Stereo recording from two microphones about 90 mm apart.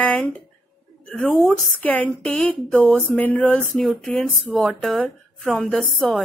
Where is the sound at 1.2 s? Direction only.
10° left (ahead or behind).